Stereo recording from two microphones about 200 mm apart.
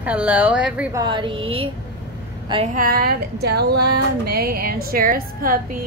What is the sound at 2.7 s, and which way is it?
Speech, 45° right (ahead or behind).